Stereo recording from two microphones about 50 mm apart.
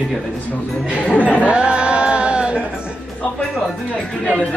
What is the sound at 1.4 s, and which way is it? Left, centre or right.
Music, right.